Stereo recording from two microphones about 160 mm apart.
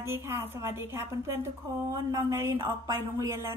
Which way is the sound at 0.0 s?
15° right (ahead or behind).